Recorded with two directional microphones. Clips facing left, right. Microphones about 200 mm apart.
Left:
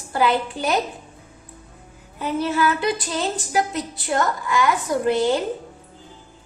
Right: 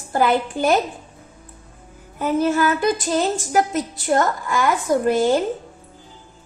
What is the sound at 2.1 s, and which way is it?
A woman's voice, 45° right (ahead or behind).